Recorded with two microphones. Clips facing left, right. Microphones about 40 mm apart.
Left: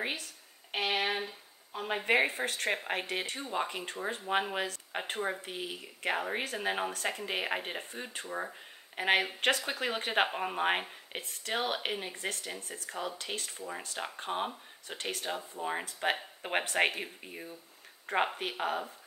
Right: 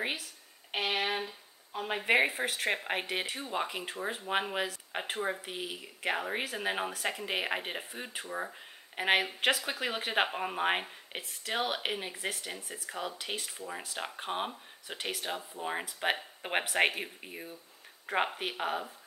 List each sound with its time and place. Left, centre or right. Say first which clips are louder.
0.0 s speech: right 1 dB; centre